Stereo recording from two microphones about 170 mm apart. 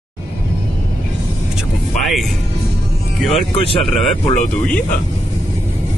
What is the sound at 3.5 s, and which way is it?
Speech, 35° left (ahead or behind).